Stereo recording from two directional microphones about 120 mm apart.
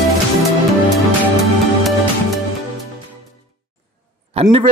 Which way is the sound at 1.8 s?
Centre (ahead or behind).